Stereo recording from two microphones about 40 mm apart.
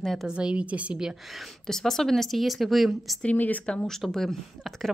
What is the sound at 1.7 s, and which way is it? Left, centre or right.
Speech, centre.